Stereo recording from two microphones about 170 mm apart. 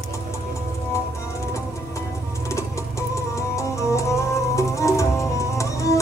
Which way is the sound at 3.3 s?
15° left (ahead or behind).